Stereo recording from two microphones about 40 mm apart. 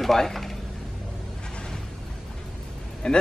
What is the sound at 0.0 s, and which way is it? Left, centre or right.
Speech, centre.